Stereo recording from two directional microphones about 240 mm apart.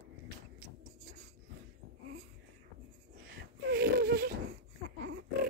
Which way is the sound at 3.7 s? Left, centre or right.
Right.